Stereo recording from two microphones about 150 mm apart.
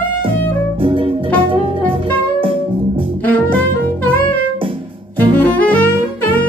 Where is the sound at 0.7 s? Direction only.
35° right (ahead or behind).